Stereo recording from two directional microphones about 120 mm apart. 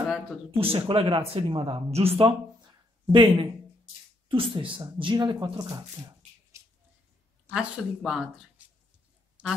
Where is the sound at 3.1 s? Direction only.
45° right (ahead or behind).